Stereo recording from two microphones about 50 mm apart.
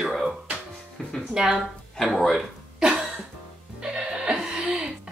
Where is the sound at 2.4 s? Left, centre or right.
Centre.